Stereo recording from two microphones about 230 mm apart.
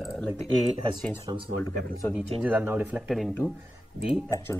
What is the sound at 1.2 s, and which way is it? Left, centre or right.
Speech, right.